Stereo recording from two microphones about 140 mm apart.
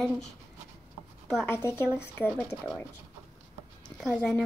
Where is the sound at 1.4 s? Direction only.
15° left (ahead or behind).